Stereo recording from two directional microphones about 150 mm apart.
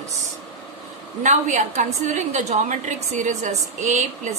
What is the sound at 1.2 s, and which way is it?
A woman's voice, 55° right (ahead or behind).